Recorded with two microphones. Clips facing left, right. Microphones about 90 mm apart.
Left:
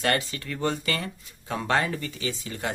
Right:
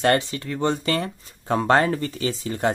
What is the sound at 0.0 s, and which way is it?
Speech, 30° right (ahead or behind).